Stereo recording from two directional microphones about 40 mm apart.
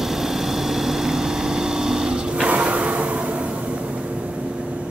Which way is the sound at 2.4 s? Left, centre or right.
Right.